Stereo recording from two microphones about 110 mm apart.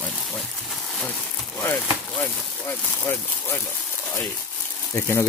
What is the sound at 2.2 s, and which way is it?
Speech, 15° left (ahead or behind).